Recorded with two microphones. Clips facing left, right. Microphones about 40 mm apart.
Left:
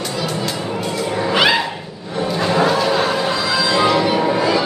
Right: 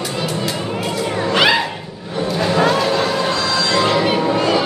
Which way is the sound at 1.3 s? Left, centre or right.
Centre.